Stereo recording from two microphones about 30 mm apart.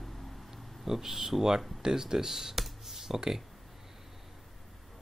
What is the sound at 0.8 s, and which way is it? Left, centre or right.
Speech, centre.